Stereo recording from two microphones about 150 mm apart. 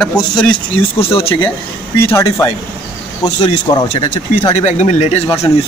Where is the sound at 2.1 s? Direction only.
15° left (ahead or behind).